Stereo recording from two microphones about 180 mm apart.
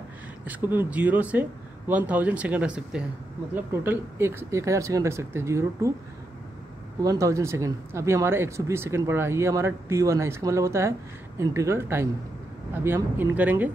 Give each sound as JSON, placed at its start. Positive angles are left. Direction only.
{"t": 0.5, "sound": "speech", "side_deg": -10}
{"t": 7.0, "sound": "speech", "side_deg": -20}